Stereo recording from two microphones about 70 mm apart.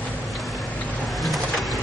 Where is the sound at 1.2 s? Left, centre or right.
Centre.